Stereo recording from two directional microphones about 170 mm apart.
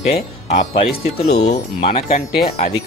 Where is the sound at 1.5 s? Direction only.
60° left (ahead or behind).